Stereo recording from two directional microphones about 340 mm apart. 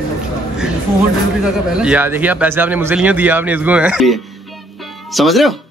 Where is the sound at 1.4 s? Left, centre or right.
Centre.